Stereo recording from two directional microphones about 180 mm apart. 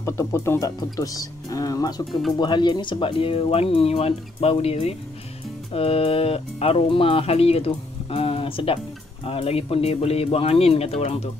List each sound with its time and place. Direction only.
0.0 s speech: 15° left (ahead or behind); by 11.2 s 35° left (ahead or behind)